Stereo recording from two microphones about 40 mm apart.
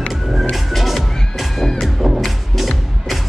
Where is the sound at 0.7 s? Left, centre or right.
Centre.